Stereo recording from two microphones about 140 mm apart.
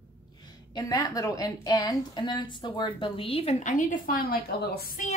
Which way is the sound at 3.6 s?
70° left (ahead or behind).